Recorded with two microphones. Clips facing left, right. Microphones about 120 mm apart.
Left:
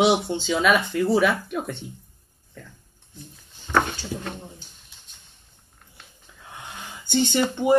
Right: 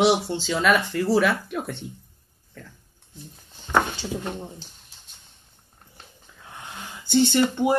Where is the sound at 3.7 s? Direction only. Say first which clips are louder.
Even; 20° right (ahead or behind).